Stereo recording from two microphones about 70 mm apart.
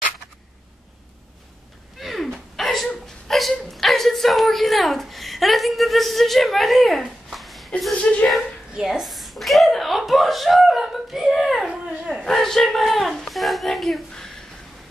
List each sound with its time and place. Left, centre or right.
2.0 s a sound: centre
2.5 s chuckle: centre
7.9 s speech: centre
8.7 s a sound: centre
11.6 s dog: centre
12.3 s speech: centre